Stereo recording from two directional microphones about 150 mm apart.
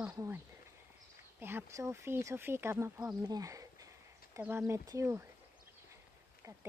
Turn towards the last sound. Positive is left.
turn(degrees=-20)  # may be behind; listen again after turning